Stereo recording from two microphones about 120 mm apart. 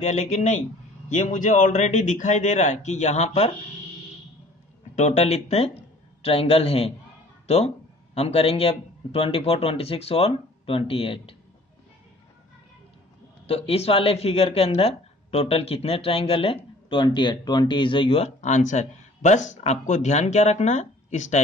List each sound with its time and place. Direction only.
0.0 s a man's voice: 75° left (ahead or behind)
4.9 s speech: 70° left (ahead or behind); by 11.3 s 50° left (ahead or behind)
13.5 s speech: 60° left (ahead or behind)
18.2 s speech: 80° left